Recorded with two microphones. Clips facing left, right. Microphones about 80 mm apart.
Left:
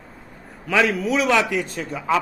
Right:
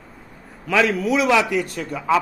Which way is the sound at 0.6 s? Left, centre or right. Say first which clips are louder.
Right 1 dB; centre.